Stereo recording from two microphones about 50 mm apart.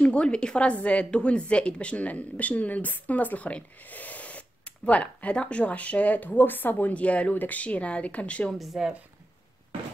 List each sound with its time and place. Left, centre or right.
0.0 s a woman's voice: left
6.9 s a woman's voice: left
8.5 s speech: centre